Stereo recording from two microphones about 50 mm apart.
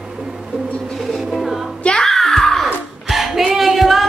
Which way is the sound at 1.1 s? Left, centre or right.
Centre.